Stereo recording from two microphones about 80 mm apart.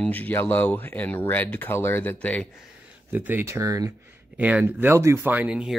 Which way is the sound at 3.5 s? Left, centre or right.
Right.